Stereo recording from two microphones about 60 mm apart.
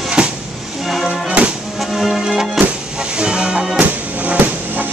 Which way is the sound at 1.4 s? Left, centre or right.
Centre.